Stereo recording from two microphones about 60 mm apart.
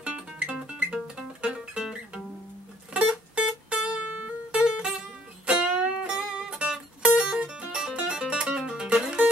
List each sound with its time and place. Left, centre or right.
0.0 s music: centre